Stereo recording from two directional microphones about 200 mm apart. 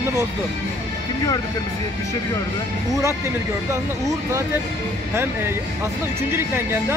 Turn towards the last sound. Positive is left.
turn(degrees=-10)  # may be behind; listen again after turning